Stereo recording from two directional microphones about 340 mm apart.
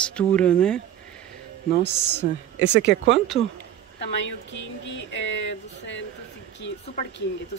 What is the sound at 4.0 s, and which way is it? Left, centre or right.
Speech, left.